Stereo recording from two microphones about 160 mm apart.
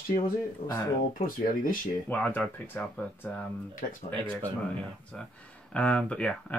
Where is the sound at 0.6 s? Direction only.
35° left (ahead or behind).